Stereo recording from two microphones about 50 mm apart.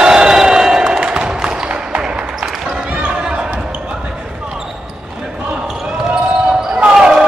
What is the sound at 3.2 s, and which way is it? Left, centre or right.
Basketball bounce, right.